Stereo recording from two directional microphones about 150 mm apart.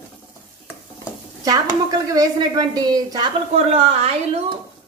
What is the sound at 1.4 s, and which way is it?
A woman's voice, 25° right (ahead or behind).